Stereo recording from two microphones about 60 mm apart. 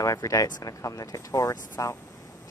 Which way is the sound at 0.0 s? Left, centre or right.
Left.